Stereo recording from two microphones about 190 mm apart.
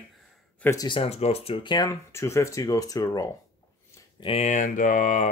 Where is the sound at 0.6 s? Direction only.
20° left (ahead or behind).